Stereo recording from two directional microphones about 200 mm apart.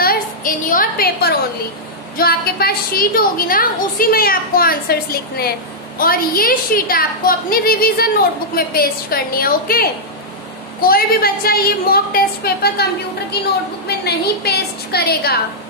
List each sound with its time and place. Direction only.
0.0 s a sound: 45° left (ahead or behind)
2.1 s a woman's voice: 50° left (ahead or behind)
13.8 s a woman's voice: 55° left (ahead or behind)